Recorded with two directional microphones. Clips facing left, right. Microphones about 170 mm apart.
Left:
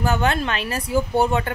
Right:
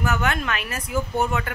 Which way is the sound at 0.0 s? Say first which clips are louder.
Left 3 dB; 30° left (ahead or behind).